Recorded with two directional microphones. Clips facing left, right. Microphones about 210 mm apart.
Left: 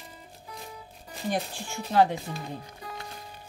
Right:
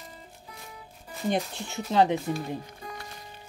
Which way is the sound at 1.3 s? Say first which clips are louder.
Right 2 dB; 20° right (ahead or behind).